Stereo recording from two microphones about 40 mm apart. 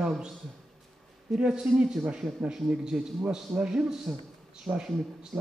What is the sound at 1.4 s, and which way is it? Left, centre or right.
Speech, centre.